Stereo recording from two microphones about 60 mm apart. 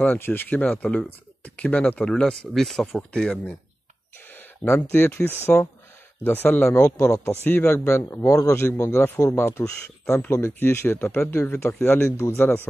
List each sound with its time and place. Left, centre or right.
0.0 s speech: left
0.6 s speech: left
4.3 s a sound: left
4.7 s speech: left
6.7 s speech: left
7.4 s speech: left
8.7 s speech: left